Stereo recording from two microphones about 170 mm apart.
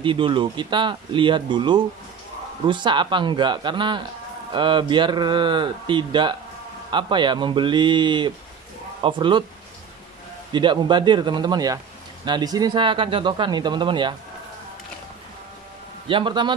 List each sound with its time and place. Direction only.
0.0 s speech: 30° right (ahead or behind)
10.5 s speech: 25° right (ahead or behind)
16.1 s speech: 30° right (ahead or behind)